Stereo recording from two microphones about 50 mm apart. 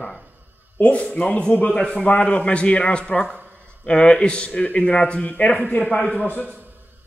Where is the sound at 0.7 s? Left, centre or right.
Left.